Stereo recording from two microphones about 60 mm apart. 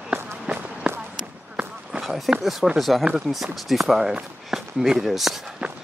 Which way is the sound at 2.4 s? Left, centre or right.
Centre.